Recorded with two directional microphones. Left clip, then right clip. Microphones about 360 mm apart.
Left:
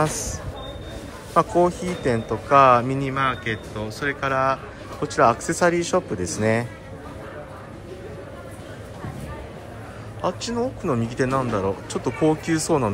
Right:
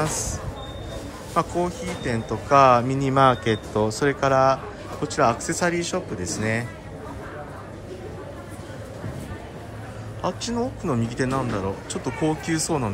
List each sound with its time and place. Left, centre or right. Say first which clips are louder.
1.3 s speech: left 5 dB; centre
10.2 s speech: left 2 dB; centre